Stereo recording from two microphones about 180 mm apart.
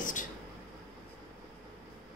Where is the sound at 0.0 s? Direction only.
45° left (ahead or behind).